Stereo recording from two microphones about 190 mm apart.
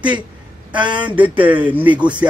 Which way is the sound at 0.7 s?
25° right (ahead or behind).